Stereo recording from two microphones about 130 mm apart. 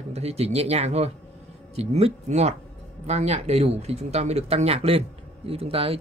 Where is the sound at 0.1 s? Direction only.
55° right (ahead or behind).